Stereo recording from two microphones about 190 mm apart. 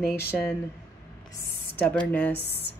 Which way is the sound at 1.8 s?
5° left (ahead or behind).